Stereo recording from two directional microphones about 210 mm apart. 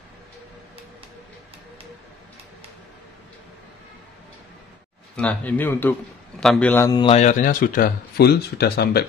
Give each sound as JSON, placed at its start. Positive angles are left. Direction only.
{"t": 5.1, "sound": "a man's voice", "side_deg": 5}